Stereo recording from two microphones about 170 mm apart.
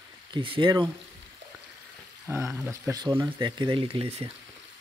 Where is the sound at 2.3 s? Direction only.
15° right (ahead or behind); by 4.3 s 35° right (ahead or behind).